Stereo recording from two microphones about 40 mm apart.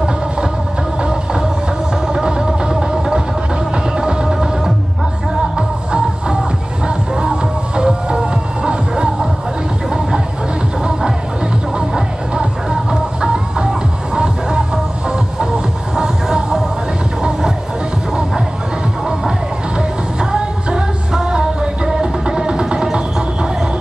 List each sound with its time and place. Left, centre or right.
2.1 s music: centre
10.8 s music: centre
16.0 s music: centre
20.2 s music: centre